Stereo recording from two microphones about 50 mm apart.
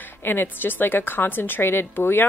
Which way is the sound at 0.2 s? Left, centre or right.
Left.